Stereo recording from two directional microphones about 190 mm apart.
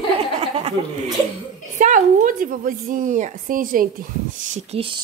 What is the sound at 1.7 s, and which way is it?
A woman's voice, 40° right (ahead or behind).